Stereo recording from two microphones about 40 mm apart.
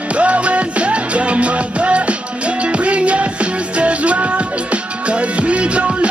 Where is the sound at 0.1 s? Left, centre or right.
Right.